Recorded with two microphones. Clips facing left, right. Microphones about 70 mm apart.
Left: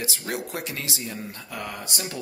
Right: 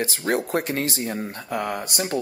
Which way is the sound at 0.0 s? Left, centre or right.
Right.